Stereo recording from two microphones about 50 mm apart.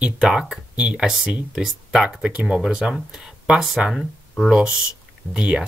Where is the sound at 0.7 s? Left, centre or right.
Right.